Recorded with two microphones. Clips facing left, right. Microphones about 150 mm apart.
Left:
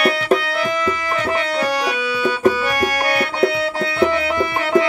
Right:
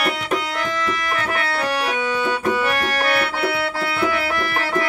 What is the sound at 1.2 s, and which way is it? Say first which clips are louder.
Music: left 4 dB; 15° left (ahead or behind).